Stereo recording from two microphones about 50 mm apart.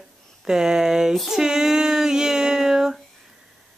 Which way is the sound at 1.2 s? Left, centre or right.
Centre.